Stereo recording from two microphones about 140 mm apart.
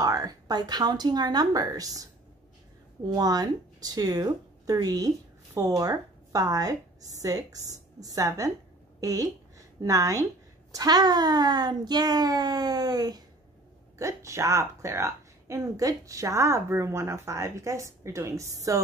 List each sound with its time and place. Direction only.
0.0 s a woman's voice: 25° right (ahead or behind)
3.1 s speech: 30° right (ahead or behind)